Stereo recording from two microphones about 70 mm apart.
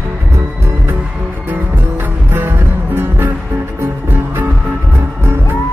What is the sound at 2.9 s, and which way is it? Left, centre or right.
Music, right.